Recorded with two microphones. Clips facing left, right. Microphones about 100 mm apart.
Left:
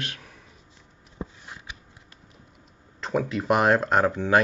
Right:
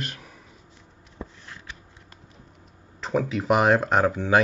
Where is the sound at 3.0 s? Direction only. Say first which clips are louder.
Right 1 dB; centre (ahead or behind).